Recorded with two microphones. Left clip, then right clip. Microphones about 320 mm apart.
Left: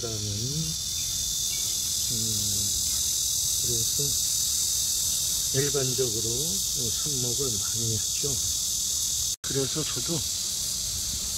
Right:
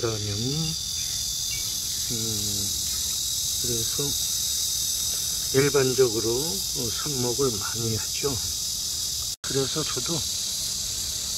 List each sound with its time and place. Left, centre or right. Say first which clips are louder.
5.5 s speech: right 9 dB; centre